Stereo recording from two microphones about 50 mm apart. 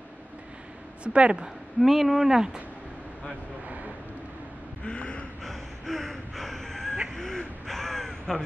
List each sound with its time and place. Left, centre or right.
1.0 s speech: right
1.8 s speech: centre
3.6 s vehicle: right
4.8 s gasp: left
5.4 s gasp: centre
7.2 s caw: centre